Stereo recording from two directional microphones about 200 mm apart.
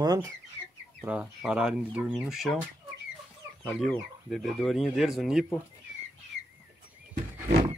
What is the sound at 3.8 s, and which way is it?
Speech, centre (ahead or behind).